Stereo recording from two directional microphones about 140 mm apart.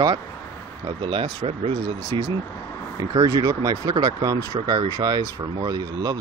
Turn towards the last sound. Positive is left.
turn(degrees=-25)  # may be behind; listen again after turning